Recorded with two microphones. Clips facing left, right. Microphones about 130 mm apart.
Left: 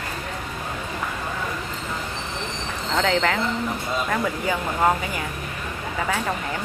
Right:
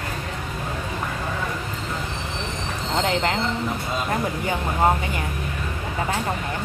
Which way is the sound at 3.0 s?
20° right (ahead or behind).